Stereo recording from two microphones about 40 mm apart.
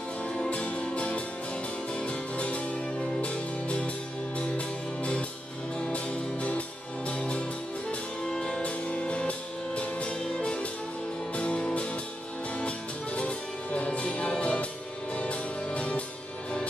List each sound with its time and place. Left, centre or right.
0.5 s music: left